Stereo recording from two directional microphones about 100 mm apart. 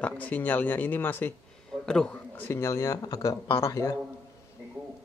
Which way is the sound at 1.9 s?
10° left (ahead or behind).